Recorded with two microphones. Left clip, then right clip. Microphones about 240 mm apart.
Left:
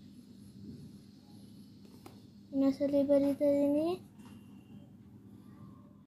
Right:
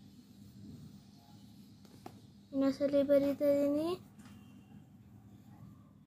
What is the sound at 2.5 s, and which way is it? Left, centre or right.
A child's voice, centre.